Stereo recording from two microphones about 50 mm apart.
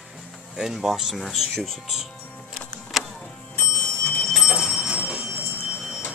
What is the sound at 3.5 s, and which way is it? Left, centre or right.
Bicycle bell, left.